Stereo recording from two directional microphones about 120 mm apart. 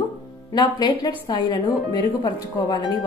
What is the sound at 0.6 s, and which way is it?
A woman's voice, 35° left (ahead or behind).